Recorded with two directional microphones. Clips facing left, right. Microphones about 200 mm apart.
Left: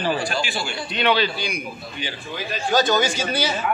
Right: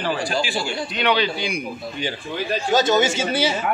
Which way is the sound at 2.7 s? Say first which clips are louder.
Right 1 dB; 25° right (ahead or behind).